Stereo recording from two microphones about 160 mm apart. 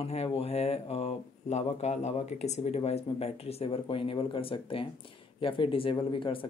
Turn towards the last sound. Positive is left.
turn(degrees=30)  # may be behind; listen again after turning